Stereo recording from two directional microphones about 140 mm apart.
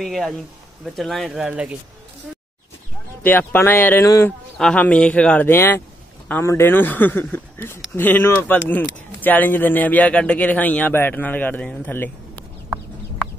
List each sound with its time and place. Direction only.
0.0 s speech: centre (ahead or behind)
3.3 s a man's voice: 15° left (ahead or behind)
4.6 s a man's voice: 5° left (ahead or behind)